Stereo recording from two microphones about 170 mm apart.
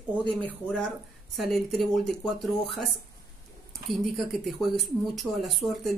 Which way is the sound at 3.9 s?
Centre (ahead or behind).